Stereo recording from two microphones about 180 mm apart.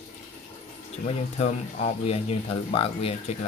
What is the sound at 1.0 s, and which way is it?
Speech, 35° left (ahead or behind).